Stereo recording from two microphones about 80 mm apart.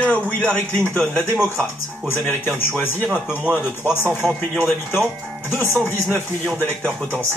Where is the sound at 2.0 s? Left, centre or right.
Left.